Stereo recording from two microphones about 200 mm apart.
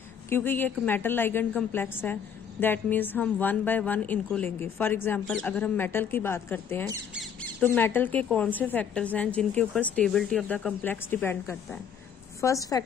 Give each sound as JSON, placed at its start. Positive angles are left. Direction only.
{"t": 0.3, "sound": "speech", "side_deg": 10}